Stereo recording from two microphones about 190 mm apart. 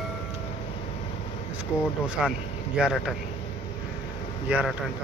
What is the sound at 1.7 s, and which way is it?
Speech, 5° right (ahead or behind).